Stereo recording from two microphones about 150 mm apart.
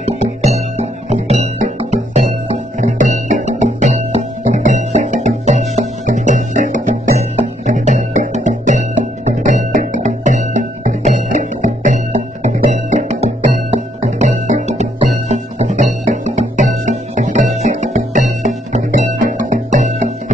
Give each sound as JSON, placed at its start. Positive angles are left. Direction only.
{"t": 0.0, "sound": "music", "side_deg": -50}